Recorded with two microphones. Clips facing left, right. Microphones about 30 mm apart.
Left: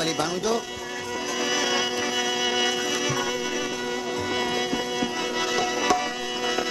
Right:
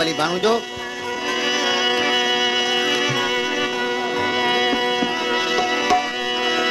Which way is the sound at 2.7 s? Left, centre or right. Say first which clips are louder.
Right 6 dB; right.